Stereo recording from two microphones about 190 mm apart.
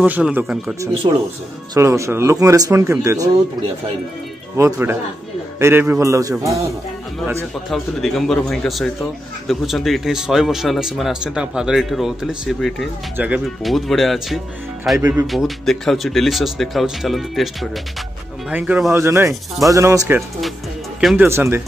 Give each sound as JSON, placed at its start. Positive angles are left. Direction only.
{"t": 0.0, "sound": "speech", "side_deg": -10}
{"t": 1.0, "sound": "speech", "side_deg": -25}
{"t": 4.6, "sound": "speech", "side_deg": -15}
{"t": 7.7, "sound": "speech", "side_deg": 0}
{"t": 15.0, "sound": "speech", "side_deg": -15}
{"t": 15.2, "sound": "speech", "side_deg": 0}
{"t": 21.0, "sound": "speech", "side_deg": 0}
{"t": 21.3, "sound": "speech", "side_deg": -15}